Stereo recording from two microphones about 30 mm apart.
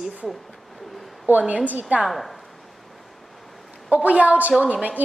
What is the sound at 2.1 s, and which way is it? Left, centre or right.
Speech, centre.